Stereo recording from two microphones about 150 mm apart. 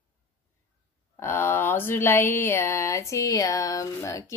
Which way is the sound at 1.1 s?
15° left (ahead or behind).